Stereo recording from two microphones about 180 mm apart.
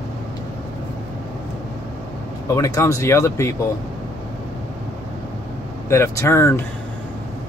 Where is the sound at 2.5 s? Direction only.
15° left (ahead or behind).